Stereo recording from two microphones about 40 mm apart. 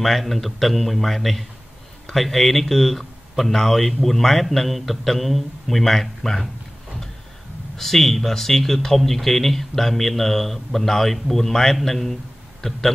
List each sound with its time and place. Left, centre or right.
0.0 s speech: centre
7.7 s speech: centre